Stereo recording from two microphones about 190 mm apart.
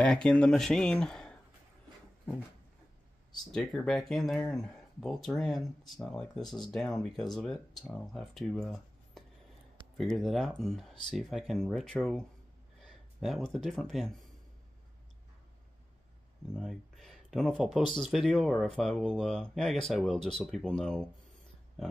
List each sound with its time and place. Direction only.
0.0 s speech: 5° left (ahead or behind)
3.5 s speech: centre (ahead or behind)
16.5 s speech: centre (ahead or behind)